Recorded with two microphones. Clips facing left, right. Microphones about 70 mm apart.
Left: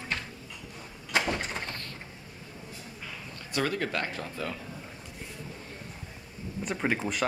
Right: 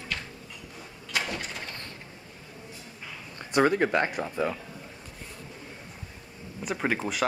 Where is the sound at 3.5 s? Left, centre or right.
Right.